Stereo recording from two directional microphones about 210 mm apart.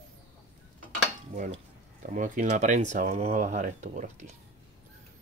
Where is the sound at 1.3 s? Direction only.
35° right (ahead or behind).